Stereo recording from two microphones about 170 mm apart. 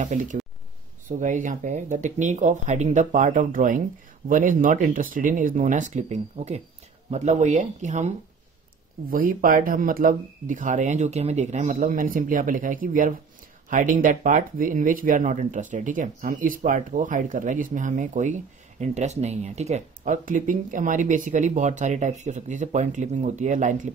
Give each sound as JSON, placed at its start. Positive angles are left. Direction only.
{"t": 0.0, "sound": "speech", "side_deg": -45}
{"t": 9.1, "sound": "speech", "side_deg": -55}